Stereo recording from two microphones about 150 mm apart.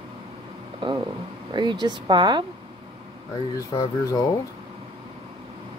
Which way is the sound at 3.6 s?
20° left (ahead or behind).